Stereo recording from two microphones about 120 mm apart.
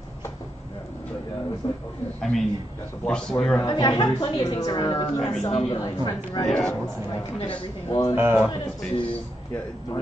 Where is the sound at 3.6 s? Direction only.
35° left (ahead or behind).